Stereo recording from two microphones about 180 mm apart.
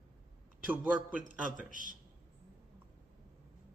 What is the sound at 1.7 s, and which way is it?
Speech, 45° right (ahead or behind).